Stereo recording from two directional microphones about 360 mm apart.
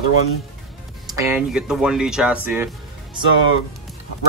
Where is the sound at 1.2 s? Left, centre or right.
Centre.